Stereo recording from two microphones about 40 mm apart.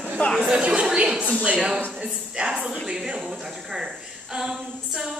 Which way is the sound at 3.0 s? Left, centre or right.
Centre.